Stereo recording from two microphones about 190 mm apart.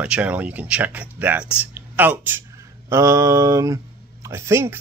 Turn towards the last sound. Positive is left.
turn(degrees=-15)  # may be behind; listen again after turning